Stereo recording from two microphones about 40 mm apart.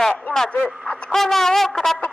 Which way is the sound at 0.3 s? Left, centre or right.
Left.